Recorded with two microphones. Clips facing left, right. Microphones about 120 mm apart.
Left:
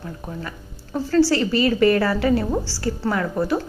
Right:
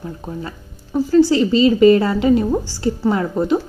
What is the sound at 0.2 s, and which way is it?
A woman's voice, 25° right (ahead or behind).